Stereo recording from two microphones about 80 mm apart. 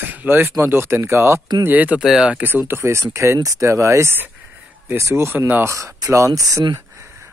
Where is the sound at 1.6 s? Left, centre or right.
Centre.